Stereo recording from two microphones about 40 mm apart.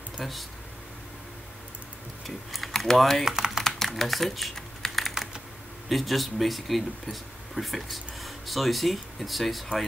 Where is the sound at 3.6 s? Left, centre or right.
Centre.